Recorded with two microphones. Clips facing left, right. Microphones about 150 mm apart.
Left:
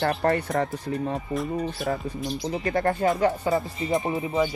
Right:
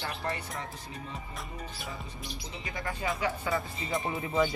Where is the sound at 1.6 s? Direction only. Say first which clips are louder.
Left 13 dB; 75° left (ahead or behind).